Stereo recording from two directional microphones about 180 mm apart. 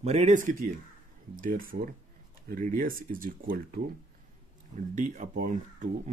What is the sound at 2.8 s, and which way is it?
Speech, 50° right (ahead or behind).